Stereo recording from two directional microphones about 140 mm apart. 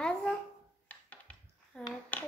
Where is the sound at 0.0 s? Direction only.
5° left (ahead or behind).